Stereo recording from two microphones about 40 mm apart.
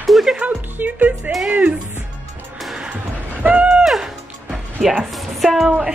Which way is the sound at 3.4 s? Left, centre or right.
Right.